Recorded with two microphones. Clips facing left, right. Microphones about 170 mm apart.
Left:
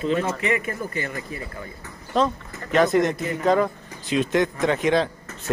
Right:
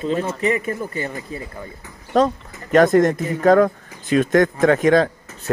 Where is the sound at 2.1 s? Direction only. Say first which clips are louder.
Right 5 dB; 45° right (ahead or behind).